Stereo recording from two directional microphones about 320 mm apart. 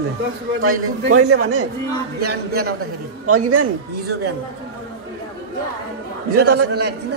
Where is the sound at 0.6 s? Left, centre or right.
Right.